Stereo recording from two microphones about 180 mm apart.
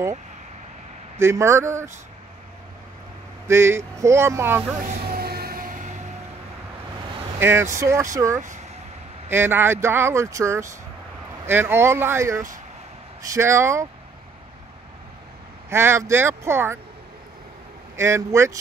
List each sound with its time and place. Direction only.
1.1 s speech: 15° right (ahead or behind)
3.4 s speech: 15° right (ahead or behind)
4.7 s music: 45° right (ahead or behind)
7.3 s speech: 15° right (ahead or behind)
9.3 s speech: 10° right (ahead or behind)
15.7 s speech: 15° right (ahead or behind)
17.9 s speech: 15° right (ahead or behind)